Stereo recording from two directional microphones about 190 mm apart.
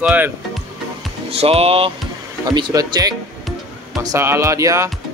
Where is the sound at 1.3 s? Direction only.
30° right (ahead or behind); by 4.9 s 15° right (ahead or behind).